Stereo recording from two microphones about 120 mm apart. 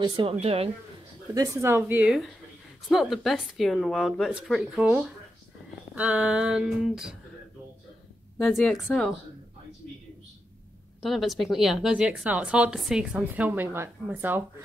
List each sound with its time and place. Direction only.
0.0 s speech: 45° right (ahead or behind)
1.3 s speech: 30° right (ahead or behind)
2.9 s speech: centre (ahead or behind)
4.3 s a sound: 5° right (ahead or behind)
8.4 s speech: 5° left (ahead or behind)
11.0 s speech: centre (ahead or behind)
13.2 s a sound: 15° right (ahead or behind)